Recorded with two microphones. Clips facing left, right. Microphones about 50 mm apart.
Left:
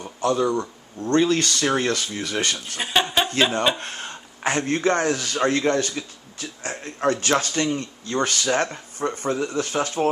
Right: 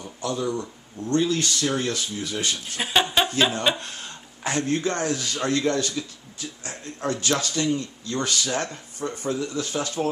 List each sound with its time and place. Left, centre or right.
0.0 s speech: left
2.8 s chuckle: centre
3.8 s a man's voice: left